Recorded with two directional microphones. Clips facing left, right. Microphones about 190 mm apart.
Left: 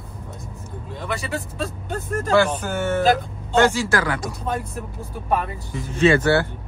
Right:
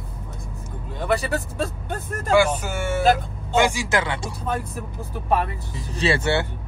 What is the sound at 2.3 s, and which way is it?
Speech, 10° right (ahead or behind).